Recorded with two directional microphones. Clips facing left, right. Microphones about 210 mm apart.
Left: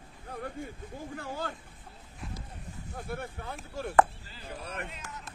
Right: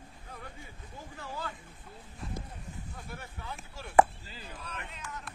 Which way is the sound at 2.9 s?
50° left (ahead or behind).